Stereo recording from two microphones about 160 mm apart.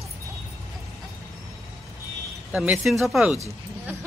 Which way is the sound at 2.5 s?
5° right (ahead or behind).